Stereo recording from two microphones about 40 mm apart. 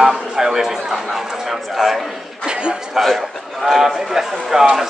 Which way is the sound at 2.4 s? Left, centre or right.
Right.